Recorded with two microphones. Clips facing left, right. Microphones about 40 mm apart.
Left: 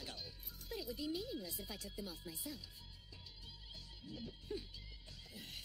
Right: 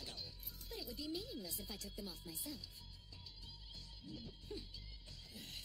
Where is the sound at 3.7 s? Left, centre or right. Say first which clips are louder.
Left 1 dB; centre.